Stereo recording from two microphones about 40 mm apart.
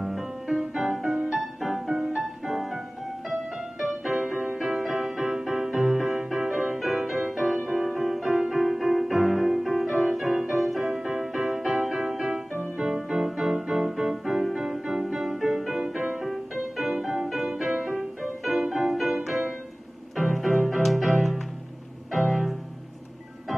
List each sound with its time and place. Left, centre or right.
0.0 s music: centre
3.8 s music: centre